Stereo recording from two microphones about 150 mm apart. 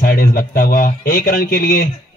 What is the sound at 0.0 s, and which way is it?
A man's voice, 70° left (ahead or behind).